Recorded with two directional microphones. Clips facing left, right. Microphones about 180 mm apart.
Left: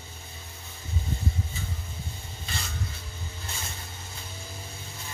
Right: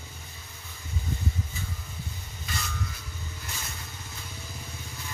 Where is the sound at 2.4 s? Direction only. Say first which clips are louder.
Right 1 dB; 30° left (ahead or behind).